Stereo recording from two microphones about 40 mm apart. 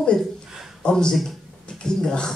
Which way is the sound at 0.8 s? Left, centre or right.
Centre.